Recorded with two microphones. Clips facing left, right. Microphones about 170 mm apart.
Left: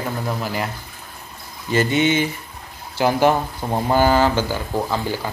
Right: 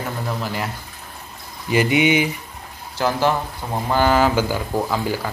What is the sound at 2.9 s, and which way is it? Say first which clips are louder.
Speech: left 3 dB; 15° left (ahead or behind).